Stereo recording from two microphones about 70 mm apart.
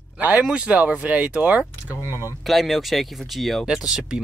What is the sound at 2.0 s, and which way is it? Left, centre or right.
Speech, left.